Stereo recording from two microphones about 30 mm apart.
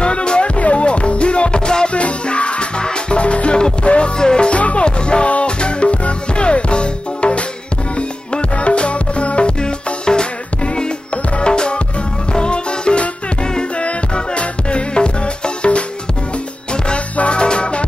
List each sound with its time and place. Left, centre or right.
0.0 s music: left
4.2 s music: left
4.5 s music: left
4.8 s music: left
10.0 s music: left
17.3 s music: left